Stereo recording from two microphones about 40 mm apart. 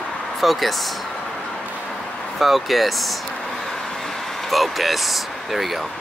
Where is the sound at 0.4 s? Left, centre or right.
Centre.